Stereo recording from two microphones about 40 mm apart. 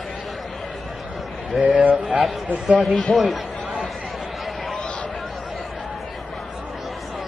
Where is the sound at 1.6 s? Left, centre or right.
Right.